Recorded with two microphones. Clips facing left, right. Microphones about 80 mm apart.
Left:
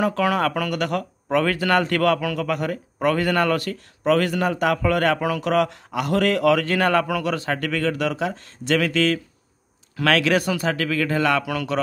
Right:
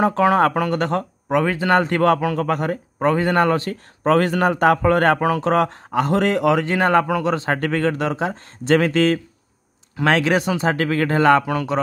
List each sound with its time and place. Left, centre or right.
0.0 s a man's voice: right